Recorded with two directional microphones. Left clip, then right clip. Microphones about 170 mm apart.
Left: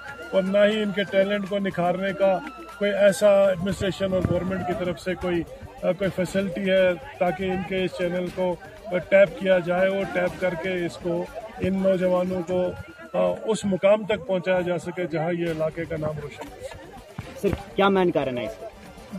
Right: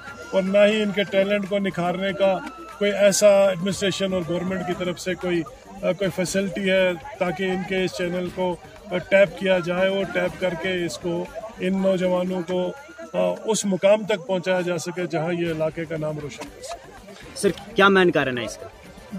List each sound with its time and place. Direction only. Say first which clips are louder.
0.3 s a man's voice: right 2 dB; 35° right (ahead or behind)
17.4 s a man's voice: right 4 dB; 75° right (ahead or behind)